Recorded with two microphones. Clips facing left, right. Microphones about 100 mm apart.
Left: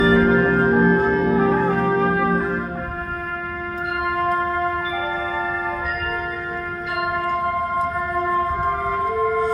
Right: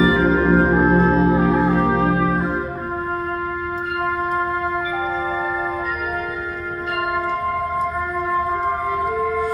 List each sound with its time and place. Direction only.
0.0 s music: 15° right (ahead or behind)
1.0 s music: 30° right (ahead or behind)
1.6 s music: 15° right (ahead or behind)
8.9 s wind instrument: centre (ahead or behind)